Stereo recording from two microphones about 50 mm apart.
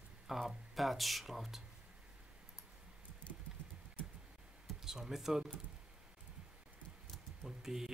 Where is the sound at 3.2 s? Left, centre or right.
Left.